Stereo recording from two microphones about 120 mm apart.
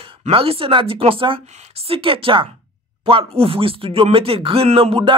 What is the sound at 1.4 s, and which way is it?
Speech, 70° right (ahead or behind).